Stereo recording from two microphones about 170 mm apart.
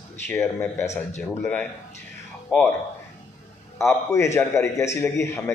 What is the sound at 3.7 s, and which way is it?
A man's voice, 15° left (ahead or behind).